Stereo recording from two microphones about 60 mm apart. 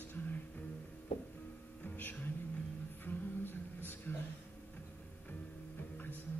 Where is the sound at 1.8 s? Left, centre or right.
Left.